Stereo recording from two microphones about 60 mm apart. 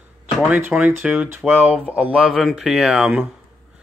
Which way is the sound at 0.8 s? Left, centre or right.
Right.